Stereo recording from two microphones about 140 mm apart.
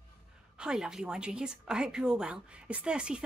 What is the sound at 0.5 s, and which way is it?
A woman's voice, 5° right (ahead or behind).